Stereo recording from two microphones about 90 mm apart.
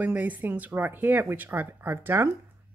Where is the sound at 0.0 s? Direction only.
15° right (ahead or behind).